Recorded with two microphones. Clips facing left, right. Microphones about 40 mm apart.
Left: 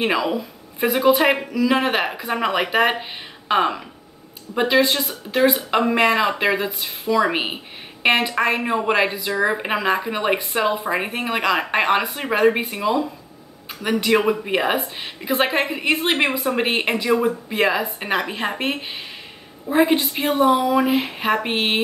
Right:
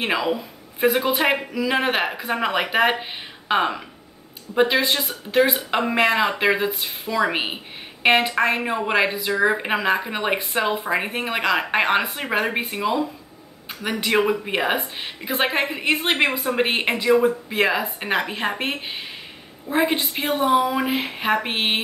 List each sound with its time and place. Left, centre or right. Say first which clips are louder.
0.0 s speech: left 2 dB; centre